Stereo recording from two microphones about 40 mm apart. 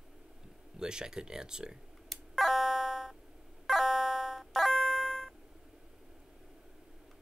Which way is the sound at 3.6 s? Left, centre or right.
Centre.